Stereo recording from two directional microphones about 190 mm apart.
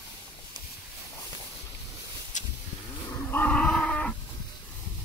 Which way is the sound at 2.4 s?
40° left (ahead or behind).